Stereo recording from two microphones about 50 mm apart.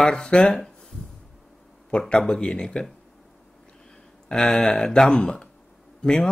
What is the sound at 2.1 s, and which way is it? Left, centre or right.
Speech, centre.